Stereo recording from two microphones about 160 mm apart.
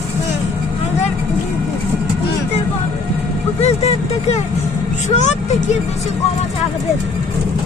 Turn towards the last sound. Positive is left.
turn(degrees=45)  # may be behind; listen again after turning